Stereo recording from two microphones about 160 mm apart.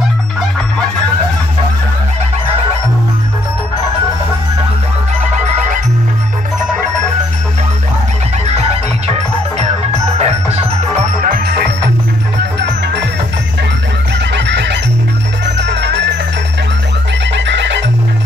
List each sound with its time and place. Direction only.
8.5 s music: 40° right (ahead or behind)
10.1 s music: 40° right (ahead or behind)
11.1 s music: 60° right (ahead or behind); by 11.7 s 75° right (ahead or behind)
14.3 s fowl: 90° right
15.4 s music: 90° right
17.3 s neigh: 90° right